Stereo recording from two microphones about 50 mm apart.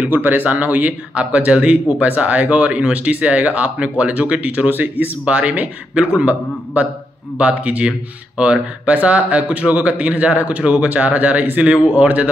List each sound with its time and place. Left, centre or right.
0.1 s speech: right